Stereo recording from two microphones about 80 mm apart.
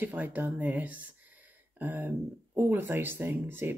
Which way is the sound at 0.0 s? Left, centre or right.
Right.